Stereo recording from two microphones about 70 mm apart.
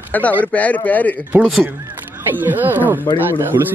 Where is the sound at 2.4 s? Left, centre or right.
Right.